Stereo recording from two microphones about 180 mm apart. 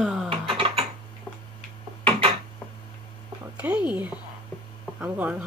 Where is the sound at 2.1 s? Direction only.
30° right (ahead or behind).